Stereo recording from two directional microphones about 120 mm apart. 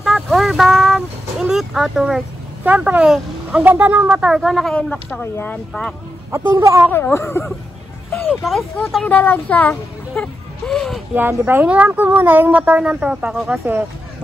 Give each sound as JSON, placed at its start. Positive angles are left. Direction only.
{"t": 0.0, "sound": "vehicle", "side_deg": 0}
{"t": 2.7, "sound": "speech", "side_deg": -10}
{"t": 4.3, "sound": "a woman's voice", "side_deg": 0}
{"t": 5.2, "sound": "speech", "side_deg": 15}
{"t": 5.7, "sound": "a woman's voice", "side_deg": 0}
{"t": 6.5, "sound": "speech", "side_deg": -25}
{"t": 6.9, "sound": "speech", "side_deg": 20}
{"t": 8.3, "sound": "speech", "side_deg": 0}
{"t": 9.1, "sound": "a sound", "side_deg": 15}
{"t": 11.1, "sound": "speech", "side_deg": -15}